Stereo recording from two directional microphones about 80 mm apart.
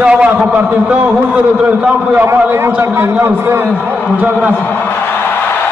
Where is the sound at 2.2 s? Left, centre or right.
Right.